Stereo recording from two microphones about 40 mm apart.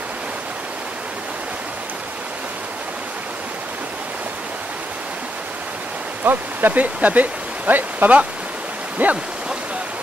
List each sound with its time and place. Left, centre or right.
6.2 s speech: right
9.0 s stream: right